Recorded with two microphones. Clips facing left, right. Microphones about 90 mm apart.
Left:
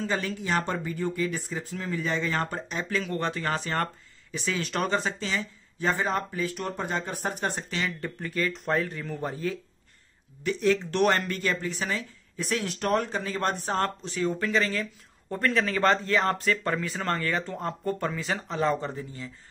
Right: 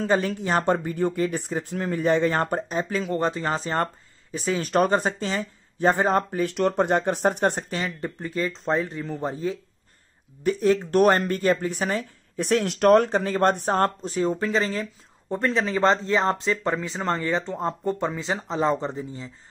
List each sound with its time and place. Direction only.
0.0 s speech: 50° right (ahead or behind)
2.8 s speech: 30° right (ahead or behind); by 6.5 s 50° right (ahead or behind)
6.5 s speech: 65° right (ahead or behind)
7.7 s speech: 30° right (ahead or behind)
11.5 s speech: 50° right (ahead or behind); by 19.3 s 25° right (ahead or behind)